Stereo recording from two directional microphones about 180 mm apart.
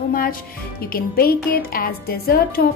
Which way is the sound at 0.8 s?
55° left (ahead or behind).